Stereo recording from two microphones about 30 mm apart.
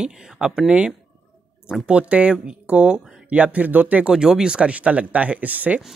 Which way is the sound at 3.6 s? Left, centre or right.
Right.